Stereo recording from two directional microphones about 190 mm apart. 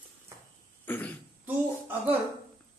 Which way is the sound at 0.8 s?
10° left (ahead or behind).